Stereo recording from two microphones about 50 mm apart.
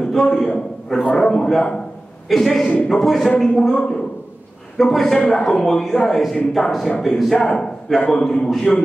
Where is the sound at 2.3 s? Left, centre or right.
Centre.